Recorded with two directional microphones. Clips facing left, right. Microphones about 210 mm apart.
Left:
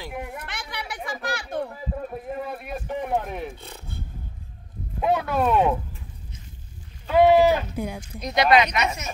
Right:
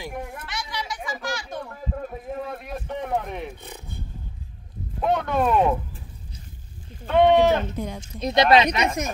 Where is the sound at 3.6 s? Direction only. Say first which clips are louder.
Right 1 dB; 15° right (ahead or behind).